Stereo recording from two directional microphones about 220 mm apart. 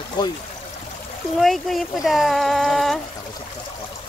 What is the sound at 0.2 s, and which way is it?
Speech, 20° left (ahead or behind).